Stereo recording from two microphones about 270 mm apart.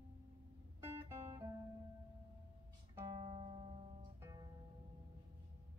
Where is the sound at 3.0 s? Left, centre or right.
Centre.